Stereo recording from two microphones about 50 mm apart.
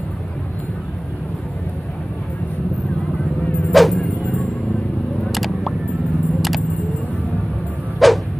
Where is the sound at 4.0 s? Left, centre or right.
Centre.